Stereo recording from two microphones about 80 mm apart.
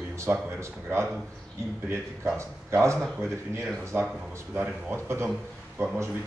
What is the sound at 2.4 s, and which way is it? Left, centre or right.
Speech, right.